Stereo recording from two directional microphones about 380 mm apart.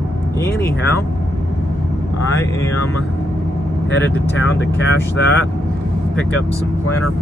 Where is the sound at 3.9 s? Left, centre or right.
Left.